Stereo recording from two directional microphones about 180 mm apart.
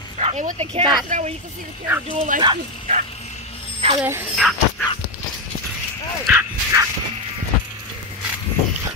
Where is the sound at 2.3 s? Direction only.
50° right (ahead or behind).